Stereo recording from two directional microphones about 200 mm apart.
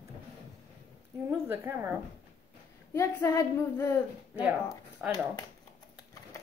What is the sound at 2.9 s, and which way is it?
Speech, 15° left (ahead or behind).